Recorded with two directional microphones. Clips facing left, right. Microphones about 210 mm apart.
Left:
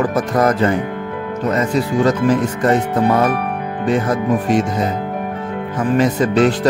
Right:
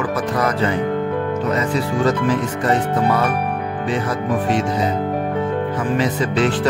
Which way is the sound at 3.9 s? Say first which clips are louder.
Left 5 dB; 45° left (ahead or behind).